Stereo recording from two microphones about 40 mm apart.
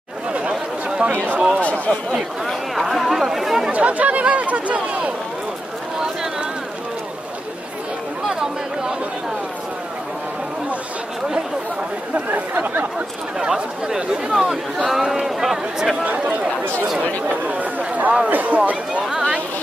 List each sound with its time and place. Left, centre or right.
0.4 s chatter: right
1.1 s speech: right
1.6 s speech: left
2.4 s speech: centre
3.7 s speech: right
12.3 s speech: right
13.4 s speech: centre
16.0 s speech: right